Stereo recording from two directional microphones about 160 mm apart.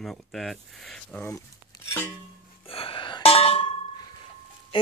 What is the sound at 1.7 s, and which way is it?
Music, 25° left (ahead or behind).